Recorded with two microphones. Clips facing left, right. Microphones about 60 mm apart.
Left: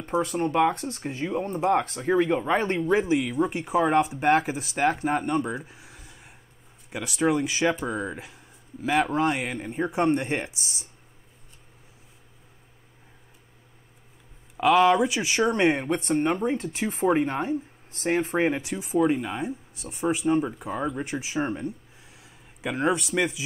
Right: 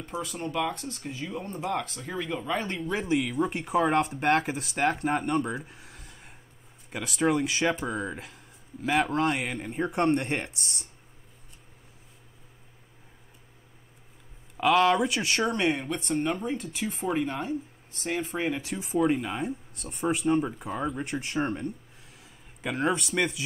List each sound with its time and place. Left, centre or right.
0.0 s speech: left
3.0 s speech: centre
5.7 s a sound: centre
6.9 s speech: centre
14.6 s speech: centre
15.5 s speech: left
16.1 s speech: left
18.7 s speech: centre